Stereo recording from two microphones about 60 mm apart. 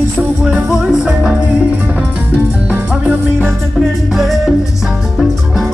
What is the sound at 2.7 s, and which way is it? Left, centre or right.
Music, right.